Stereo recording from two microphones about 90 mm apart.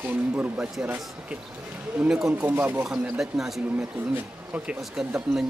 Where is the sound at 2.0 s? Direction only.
5° right (ahead or behind).